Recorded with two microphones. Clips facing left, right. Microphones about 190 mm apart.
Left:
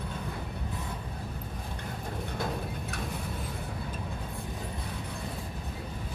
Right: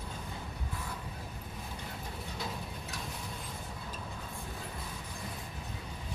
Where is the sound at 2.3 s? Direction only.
55° left (ahead or behind).